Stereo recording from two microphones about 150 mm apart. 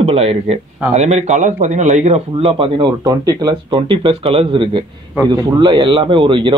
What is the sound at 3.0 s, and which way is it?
Speech, 25° right (ahead or behind).